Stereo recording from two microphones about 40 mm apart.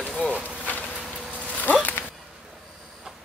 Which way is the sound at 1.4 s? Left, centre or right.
Left.